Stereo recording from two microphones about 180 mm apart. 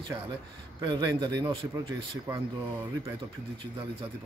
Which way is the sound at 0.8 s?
20° right (ahead or behind).